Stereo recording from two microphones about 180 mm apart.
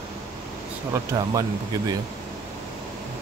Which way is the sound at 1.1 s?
20° right (ahead or behind).